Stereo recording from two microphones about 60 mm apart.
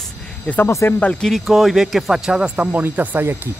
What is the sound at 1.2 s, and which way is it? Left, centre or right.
Speech, centre.